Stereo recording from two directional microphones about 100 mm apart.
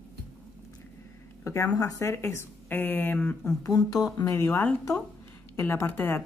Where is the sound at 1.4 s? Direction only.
30° left (ahead or behind).